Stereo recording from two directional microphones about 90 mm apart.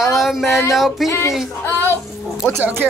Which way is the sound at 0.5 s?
30° left (ahead or behind).